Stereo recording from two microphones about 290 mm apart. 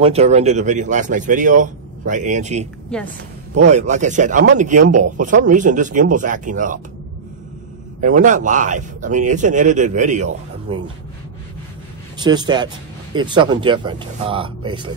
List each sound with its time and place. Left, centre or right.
0.0 s speech: right
8.0 s speech: right
12.2 s speech: centre